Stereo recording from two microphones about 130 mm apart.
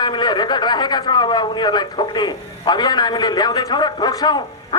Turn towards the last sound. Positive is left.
turn(degrees=30)  # may be behind; listen again after turning